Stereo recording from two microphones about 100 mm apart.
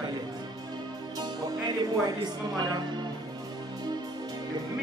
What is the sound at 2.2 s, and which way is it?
Speech, 45° right (ahead or behind).